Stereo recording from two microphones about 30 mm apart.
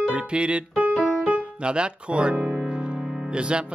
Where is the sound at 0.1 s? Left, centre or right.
Right.